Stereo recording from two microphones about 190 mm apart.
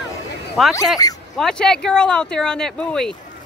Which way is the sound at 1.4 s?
5° left (ahead or behind).